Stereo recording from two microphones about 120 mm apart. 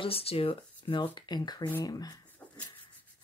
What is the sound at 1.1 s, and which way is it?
Speech, 35° left (ahead or behind).